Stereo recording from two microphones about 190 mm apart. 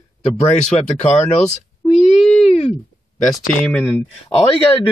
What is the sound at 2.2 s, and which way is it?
Wail, 5° left (ahead or behind).